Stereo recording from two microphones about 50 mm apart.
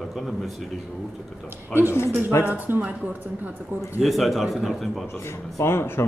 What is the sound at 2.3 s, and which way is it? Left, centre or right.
Speech, left.